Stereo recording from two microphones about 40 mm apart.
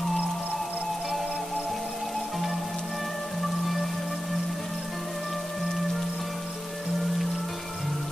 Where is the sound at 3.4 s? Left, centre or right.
Centre.